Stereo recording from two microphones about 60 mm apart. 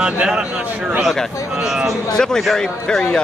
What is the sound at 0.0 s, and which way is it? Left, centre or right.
Speech, centre.